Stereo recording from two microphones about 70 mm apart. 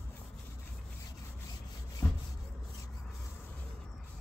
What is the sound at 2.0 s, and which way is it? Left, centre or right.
Rub, left.